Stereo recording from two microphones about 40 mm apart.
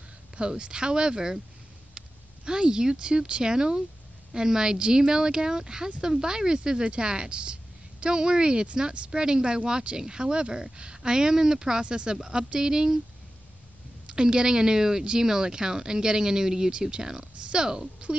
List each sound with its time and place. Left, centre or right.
0.4 s speech: right
14.0 s speech: right